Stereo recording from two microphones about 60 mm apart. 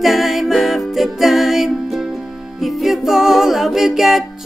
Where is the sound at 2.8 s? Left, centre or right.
Centre.